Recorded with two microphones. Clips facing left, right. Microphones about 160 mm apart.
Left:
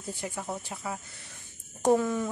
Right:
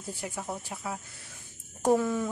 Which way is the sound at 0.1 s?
5° right (ahead or behind).